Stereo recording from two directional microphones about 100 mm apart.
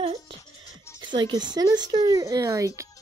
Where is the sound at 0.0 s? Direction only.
70° right (ahead or behind).